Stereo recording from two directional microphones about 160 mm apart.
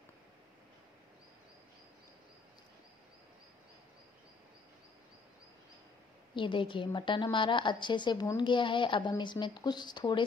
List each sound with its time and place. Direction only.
6.3 s a woman's voice: 30° left (ahead or behind)